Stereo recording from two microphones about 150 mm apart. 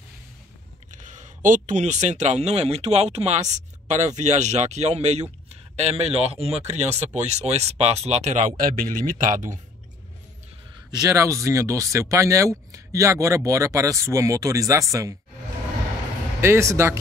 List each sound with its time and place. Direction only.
0.9 s speech: 55° right (ahead or behind)
10.9 s speech: 20° right (ahead or behind)
16.3 s a man's voice: 15° right (ahead or behind)